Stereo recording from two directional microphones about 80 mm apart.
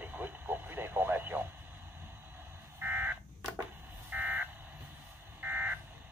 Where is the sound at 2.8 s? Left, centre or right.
Right.